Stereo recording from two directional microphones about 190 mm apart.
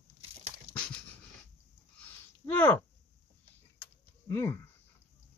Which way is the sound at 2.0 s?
10° left (ahead or behind).